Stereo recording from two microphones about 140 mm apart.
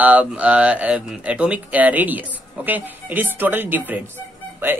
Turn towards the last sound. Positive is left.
turn(degrees=-15)  # may be behind; listen again after turning